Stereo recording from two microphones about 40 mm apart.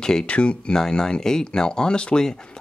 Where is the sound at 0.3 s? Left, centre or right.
Left.